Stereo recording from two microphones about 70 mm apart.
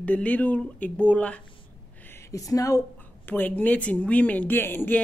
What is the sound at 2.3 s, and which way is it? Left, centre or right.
Speech, left.